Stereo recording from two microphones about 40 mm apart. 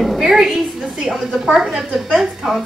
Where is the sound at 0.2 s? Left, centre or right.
Centre.